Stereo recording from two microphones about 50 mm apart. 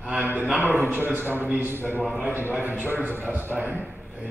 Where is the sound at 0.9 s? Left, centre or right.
Right.